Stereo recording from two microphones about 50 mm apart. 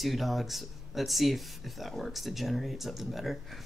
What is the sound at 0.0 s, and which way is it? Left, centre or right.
Speech, centre.